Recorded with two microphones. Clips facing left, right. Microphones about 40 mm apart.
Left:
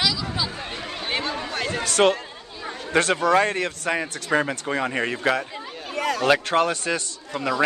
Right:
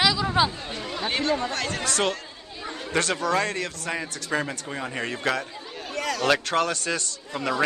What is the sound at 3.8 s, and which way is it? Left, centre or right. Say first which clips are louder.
A man's voice: left 6 dB; left.